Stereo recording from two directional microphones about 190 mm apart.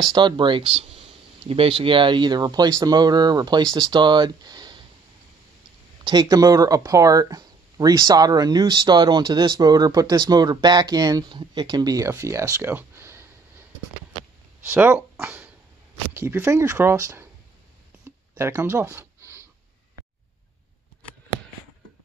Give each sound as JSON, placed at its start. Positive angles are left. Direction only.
{"t": 0.1, "sound": "speech", "side_deg": -25}
{"t": 6.0, "sound": "speech", "side_deg": -20}
{"t": 14.6, "sound": "speech", "side_deg": -10}
{"t": 18.3, "sound": "a sound", "side_deg": -15}